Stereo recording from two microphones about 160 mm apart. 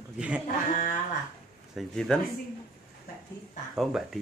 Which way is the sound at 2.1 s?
5° left (ahead or behind).